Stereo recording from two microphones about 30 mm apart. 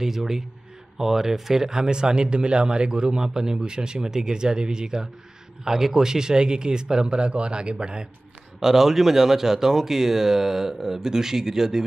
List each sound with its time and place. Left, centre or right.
0.0 s speech: centre
1.9 s a man's voice: right
8.5 s speech: centre